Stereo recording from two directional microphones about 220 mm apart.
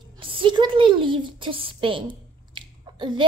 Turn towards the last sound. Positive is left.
turn(degrees=-20)  # may be behind; listen again after turning